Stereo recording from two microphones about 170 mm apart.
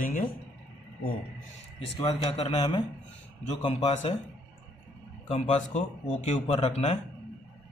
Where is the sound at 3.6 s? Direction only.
40° left (ahead or behind).